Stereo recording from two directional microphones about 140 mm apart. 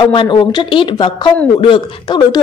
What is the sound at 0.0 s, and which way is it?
A man's voice, 35° left (ahead or behind).